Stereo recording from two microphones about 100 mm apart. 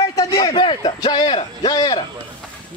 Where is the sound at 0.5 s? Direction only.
55° left (ahead or behind).